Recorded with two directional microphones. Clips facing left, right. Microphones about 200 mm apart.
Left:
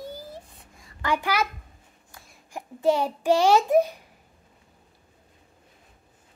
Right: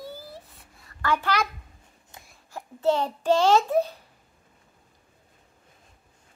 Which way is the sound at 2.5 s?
10° left (ahead or behind).